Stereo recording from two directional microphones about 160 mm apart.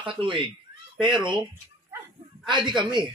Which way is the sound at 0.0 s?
30° right (ahead or behind).